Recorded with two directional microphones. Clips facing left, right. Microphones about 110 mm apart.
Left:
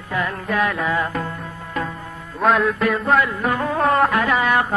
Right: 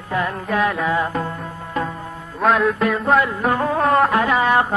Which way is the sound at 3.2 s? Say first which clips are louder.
Right 2 dB; 30° right (ahead or behind).